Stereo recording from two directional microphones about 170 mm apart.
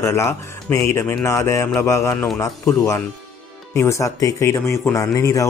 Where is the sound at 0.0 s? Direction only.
15° left (ahead or behind).